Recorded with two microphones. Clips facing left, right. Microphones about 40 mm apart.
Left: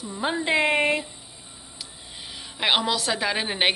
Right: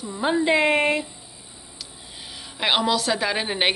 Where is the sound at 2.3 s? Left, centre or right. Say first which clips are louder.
Right 1 dB; centre.